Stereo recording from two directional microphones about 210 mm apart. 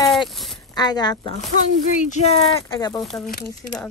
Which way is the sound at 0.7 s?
20° left (ahead or behind).